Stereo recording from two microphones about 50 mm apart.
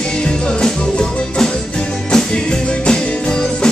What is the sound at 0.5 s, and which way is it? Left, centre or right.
Music, centre.